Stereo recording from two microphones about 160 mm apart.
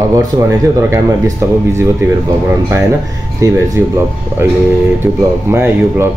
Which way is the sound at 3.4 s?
20° right (ahead or behind).